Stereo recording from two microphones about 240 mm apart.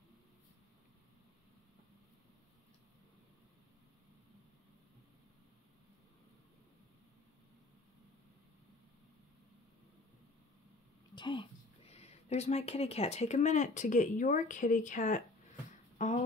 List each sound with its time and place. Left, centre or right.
11.1 s speech: centre